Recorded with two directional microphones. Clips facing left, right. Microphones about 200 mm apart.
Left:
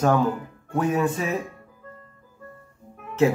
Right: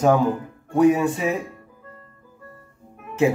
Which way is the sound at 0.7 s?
15° right (ahead or behind).